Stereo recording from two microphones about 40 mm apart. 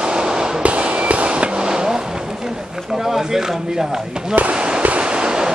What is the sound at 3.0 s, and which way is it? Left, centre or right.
Speech, centre.